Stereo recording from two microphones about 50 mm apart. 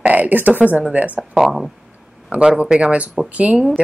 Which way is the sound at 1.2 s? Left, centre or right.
Centre.